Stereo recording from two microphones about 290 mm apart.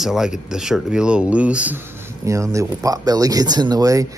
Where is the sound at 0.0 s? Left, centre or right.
Centre.